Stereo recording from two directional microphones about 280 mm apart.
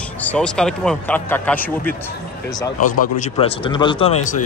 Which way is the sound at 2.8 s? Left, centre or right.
Left.